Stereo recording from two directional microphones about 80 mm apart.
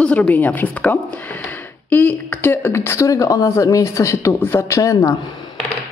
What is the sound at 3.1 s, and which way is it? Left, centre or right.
Speech, left.